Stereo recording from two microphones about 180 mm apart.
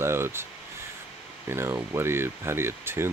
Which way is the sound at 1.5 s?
15° right (ahead or behind).